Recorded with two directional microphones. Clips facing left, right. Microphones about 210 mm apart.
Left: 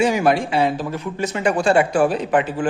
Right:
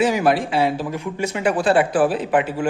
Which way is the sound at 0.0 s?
Centre (ahead or behind).